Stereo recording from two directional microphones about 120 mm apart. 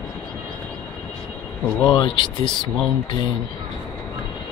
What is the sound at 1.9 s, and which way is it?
Speech, 35° left (ahead or behind).